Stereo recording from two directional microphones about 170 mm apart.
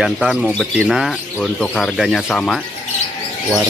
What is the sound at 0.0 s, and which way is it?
Speech, 5° right (ahead or behind).